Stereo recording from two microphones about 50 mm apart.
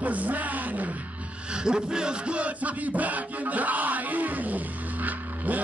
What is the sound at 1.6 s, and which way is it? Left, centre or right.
Music, centre.